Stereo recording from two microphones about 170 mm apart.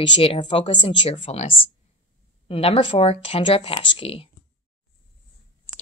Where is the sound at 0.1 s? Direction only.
30° left (ahead or behind).